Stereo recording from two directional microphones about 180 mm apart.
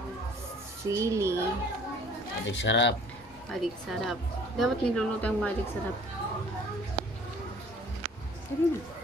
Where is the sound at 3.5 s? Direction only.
Centre (ahead or behind).